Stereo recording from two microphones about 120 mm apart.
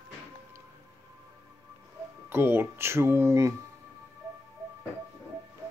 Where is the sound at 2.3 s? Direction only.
20° right (ahead or behind).